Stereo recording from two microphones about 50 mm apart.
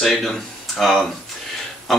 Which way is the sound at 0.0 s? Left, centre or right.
Centre.